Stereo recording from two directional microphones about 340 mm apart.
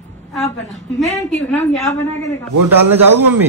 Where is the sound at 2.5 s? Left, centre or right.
Right.